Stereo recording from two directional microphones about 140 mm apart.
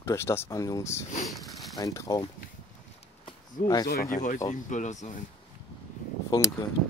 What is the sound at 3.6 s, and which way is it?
Speech, 30° left (ahead or behind).